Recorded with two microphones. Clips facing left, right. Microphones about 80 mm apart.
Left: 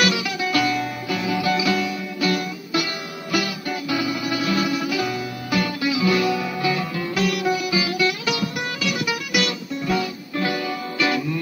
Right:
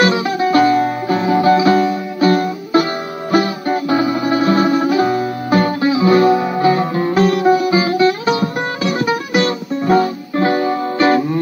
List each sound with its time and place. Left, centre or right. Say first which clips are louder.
0.0 s music: right 8 dB; right